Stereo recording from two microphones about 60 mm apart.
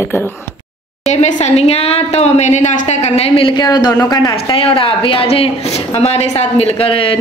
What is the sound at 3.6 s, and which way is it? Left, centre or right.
Speech, left.